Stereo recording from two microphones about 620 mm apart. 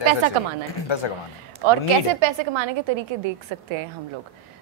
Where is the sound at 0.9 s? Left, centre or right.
Left.